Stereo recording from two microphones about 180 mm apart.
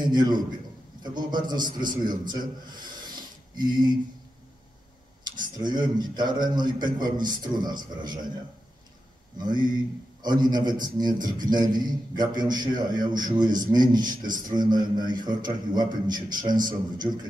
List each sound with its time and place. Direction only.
0.0 s a man's voice: 25° right (ahead or behind)
2.8 s rub: 25° right (ahead or behind)
5.2 s a man's voice: 25° right (ahead or behind)
9.4 s a man's voice: 25° right (ahead or behind)